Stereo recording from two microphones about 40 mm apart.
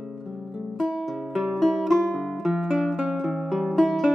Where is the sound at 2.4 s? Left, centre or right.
Centre.